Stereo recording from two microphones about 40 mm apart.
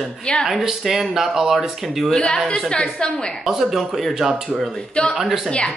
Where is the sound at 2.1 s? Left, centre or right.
Centre.